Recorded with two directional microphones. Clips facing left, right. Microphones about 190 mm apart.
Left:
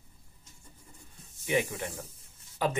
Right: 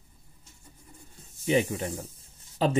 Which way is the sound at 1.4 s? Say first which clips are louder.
Right 5 dB; 30° right (ahead or behind).